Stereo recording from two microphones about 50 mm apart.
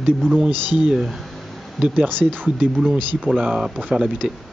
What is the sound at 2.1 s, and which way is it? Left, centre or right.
Speech, right.